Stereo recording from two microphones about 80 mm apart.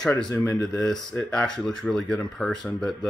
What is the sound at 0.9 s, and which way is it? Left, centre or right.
Speech, centre.